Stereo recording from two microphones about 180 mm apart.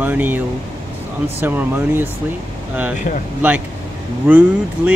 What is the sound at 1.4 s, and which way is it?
Speech, 10° right (ahead or behind).